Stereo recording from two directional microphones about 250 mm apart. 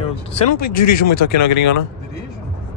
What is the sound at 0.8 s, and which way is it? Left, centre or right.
Speech, left.